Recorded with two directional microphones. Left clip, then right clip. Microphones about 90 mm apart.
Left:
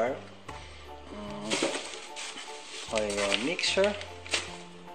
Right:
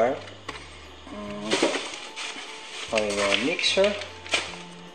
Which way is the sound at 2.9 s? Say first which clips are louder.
Right 5 dB; 30° left (ahead or behind).